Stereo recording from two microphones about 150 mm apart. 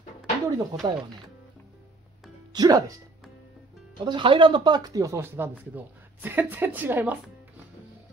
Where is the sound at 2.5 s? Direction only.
25° right (ahead or behind).